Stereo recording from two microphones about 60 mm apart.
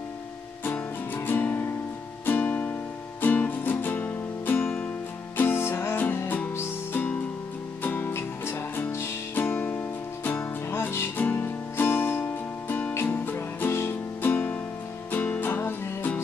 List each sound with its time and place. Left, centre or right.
0.7 s music: left
7.0 s music: left
11.1 s music: left